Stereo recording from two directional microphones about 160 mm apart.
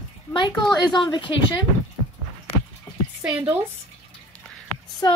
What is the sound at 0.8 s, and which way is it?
Speech, 30° left (ahead or behind).